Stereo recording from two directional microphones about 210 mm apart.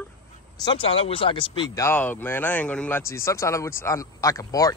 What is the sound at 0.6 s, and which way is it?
Speech, 25° left (ahead or behind).